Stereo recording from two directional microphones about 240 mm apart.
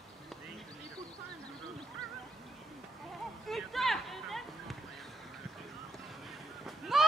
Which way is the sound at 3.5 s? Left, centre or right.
Centre.